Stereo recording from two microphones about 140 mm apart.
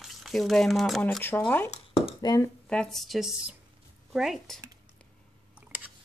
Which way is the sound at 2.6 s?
5° left (ahead or behind).